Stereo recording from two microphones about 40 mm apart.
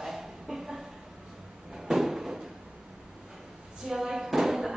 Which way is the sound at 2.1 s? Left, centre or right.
Centre.